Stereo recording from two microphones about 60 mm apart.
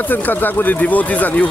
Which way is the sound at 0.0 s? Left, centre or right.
Left.